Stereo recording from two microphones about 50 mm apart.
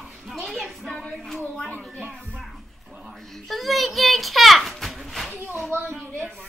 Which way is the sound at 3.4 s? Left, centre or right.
Centre.